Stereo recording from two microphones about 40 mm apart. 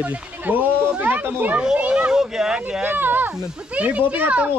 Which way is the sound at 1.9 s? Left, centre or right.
Right.